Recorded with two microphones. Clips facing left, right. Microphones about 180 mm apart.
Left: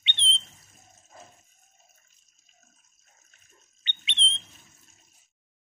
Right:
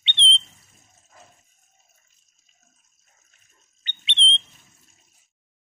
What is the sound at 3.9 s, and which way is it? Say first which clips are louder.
Rodents: right 3 dB; 30° right (ahead or behind).